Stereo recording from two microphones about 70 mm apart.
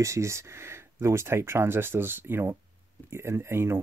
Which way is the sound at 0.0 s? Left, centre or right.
Right.